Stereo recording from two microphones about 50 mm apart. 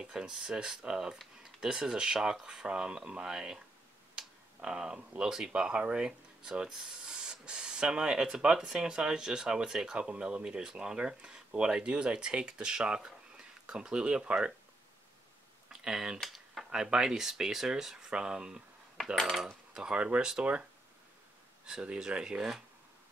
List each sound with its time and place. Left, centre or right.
0.0 s speech: centre
15.7 s speech: centre
16.2 s a sound: centre
16.7 s speech: centre
19.1 s cutlery: centre
19.4 s cutlery: centre
19.9 s speech: right
21.6 s speech: centre